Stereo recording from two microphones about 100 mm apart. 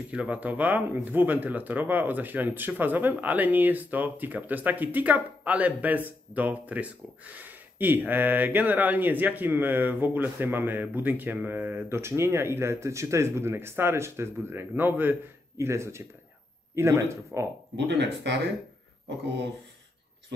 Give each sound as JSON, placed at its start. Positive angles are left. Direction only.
{"t": 0.1, "sound": "speech", "side_deg": -15}